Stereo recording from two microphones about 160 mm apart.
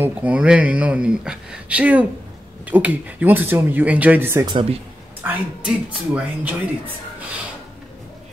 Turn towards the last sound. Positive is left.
turn(degrees=-10)  # may be behind; listen again after turning